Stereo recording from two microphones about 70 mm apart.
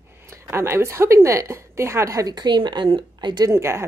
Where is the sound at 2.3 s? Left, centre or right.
Right.